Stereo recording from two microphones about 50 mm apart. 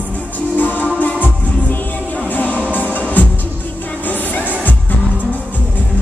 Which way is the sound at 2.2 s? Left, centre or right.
Left.